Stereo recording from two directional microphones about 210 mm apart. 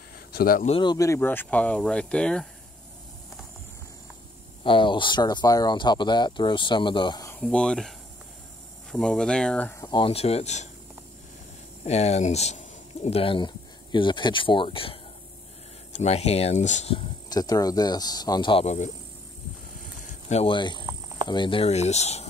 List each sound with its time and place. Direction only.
0.3 s speech: 45° left (ahead or behind)
0.7 s speech: 20° left (ahead or behind); by 2.4 s 5° left (ahead or behind)
4.6 s speech: 25° left (ahead or behind)
7.3 s speech: 5° left (ahead or behind)
8.9 s speech: 5° left (ahead or behind)
9.8 s speech: 25° left (ahead or behind)
11.8 s speech: 30° left (ahead or behind)
16.0 s speech: 30° left (ahead or behind)
20.0 s speech: 30° left (ahead or behind)